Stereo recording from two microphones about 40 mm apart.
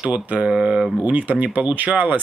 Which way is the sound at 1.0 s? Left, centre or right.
Right.